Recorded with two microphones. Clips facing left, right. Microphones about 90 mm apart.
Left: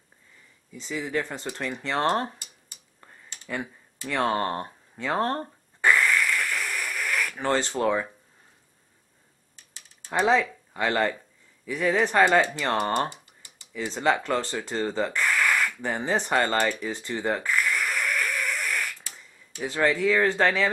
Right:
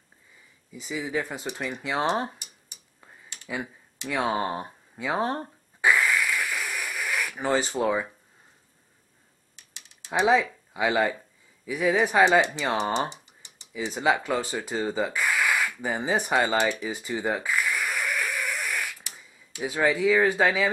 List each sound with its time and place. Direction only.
0.7 s speech: 10° right (ahead or behind)
3.0 s a sound: 10° right (ahead or behind)
9.8 s typing: 15° right (ahead or behind)
11.6 s speech: 10° right (ahead or behind)
13.1 s typing: 20° right (ahead or behind)
13.7 s speech: 10° right (ahead or behind)